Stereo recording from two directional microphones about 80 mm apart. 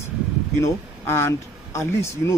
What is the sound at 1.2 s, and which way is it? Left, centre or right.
Speech, left.